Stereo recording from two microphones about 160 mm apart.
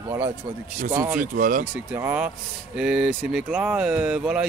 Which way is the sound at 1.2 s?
55° right (ahead or behind).